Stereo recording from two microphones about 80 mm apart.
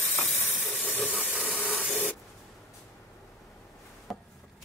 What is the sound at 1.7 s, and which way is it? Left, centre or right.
Spray, centre.